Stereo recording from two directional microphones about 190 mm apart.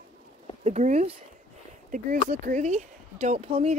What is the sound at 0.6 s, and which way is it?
Speech, 35° right (ahead or behind).